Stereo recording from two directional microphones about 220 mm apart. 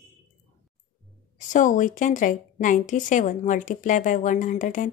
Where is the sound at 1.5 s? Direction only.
35° left (ahead or behind).